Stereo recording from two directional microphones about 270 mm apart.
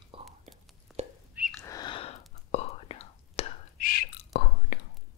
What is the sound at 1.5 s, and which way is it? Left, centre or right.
Whispering, centre.